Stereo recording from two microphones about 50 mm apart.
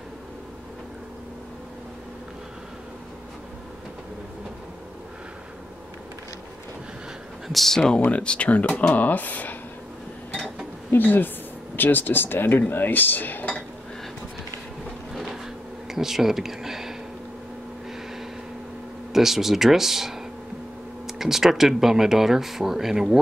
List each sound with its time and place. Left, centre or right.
7.4 s speech: centre
8.0 s speech: left
10.9 s speech: left
15.9 s a sound: centre
19.1 s speech: centre